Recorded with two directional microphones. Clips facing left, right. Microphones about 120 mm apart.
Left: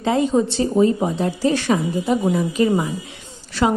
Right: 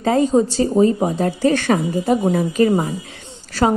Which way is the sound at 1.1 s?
50° right (ahead or behind).